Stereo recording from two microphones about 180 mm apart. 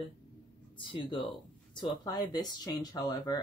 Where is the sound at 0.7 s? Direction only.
30° left (ahead or behind).